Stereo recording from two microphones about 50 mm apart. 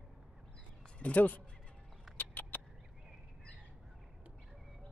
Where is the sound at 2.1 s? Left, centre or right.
Left.